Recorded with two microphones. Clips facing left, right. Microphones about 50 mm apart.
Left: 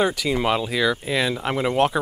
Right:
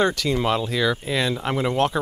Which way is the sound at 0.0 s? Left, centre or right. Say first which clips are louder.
Even; centre.